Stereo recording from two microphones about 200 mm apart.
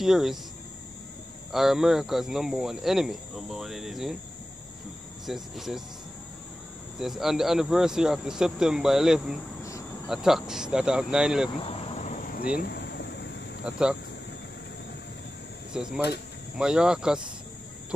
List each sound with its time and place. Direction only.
0.0 s speech: centre (ahead or behind)
1.5 s speech: centre (ahead or behind)
5.2 s speech: centre (ahead or behind)
7.0 s speech: centre (ahead or behind)
9.6 s cricket: 15° left (ahead or behind)
10.0 s speech: centre (ahead or behind)
11.5 s a sound: 30° left (ahead or behind)
12.5 s a sound: 55° left (ahead or behind)
13.7 s speech: 5° right (ahead or behind)
15.7 s speech: 5° right (ahead or behind)